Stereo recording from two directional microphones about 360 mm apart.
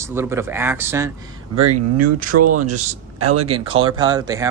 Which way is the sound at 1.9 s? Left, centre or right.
Right.